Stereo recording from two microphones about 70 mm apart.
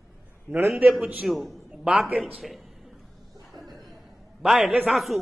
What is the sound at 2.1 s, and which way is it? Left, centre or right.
Speech, centre.